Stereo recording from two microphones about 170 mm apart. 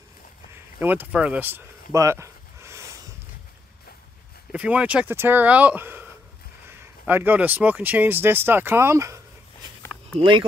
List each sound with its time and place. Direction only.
0.7 s a sound: 10° right (ahead or behind)
4.5 s speech: 5° right (ahead or behind)
7.1 s speech: 10° right (ahead or behind)
10.1 s speech: 30° right (ahead or behind)